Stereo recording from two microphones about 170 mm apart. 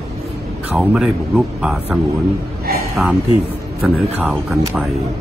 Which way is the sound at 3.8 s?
5° right (ahead or behind).